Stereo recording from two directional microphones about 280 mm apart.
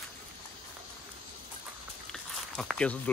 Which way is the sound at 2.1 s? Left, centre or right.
Centre.